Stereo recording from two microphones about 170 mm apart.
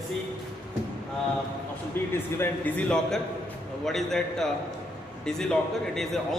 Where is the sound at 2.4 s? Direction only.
10° left (ahead or behind).